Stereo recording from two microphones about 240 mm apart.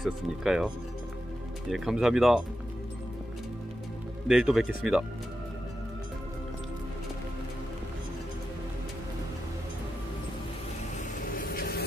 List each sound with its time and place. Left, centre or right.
0.0 s speech: centre
1.7 s speech: centre
4.3 s speech: centre
11.2 s vehicle: left